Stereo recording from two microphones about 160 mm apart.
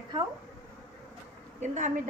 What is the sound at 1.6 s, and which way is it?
Speech, 50° right (ahead or behind).